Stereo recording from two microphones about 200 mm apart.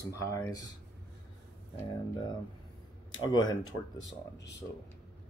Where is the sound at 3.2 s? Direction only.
20° left (ahead or behind).